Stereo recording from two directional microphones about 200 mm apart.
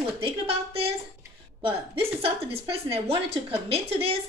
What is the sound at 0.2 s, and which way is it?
A woman's voice, 30° right (ahead or behind).